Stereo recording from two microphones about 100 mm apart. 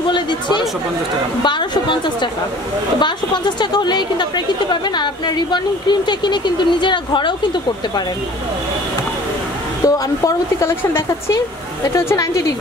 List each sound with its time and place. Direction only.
0.1 s a sound: 50° left (ahead or behind)
1.4 s a woman's voice: 50° left (ahead or behind)
9.8 s speech: 35° left (ahead or behind)